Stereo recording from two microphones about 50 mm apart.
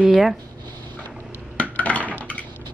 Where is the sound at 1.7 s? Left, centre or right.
Left.